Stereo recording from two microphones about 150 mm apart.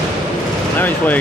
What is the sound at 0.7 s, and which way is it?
Vehicle, 10° left (ahead or behind).